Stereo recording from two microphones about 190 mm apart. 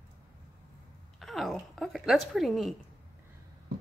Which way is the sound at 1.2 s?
Centre (ahead or behind).